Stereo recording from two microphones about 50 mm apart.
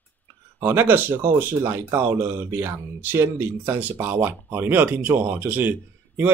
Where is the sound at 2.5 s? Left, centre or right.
Right.